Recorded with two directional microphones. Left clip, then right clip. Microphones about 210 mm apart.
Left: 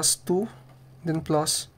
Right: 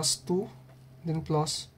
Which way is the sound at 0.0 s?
55° left (ahead or behind).